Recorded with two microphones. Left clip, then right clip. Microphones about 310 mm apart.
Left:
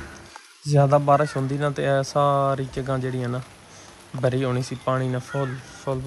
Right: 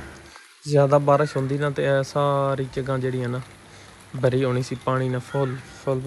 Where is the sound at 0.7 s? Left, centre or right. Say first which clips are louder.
Right 1 dB; centre.